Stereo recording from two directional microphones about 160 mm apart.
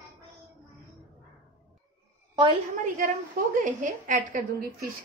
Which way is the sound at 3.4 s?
65° right (ahead or behind).